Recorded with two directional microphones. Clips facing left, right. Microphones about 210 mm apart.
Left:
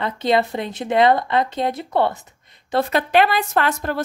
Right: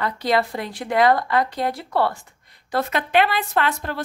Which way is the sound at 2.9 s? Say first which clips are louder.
Left 2 dB; 40° left (ahead or behind).